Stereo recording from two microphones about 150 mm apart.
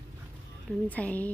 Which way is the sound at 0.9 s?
10° left (ahead or behind).